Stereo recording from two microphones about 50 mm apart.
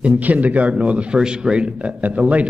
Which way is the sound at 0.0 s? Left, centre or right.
Right.